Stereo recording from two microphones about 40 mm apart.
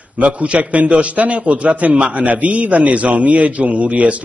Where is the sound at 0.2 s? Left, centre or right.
Right.